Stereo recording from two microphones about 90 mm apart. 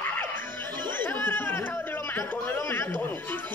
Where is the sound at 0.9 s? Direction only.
25° left (ahead or behind).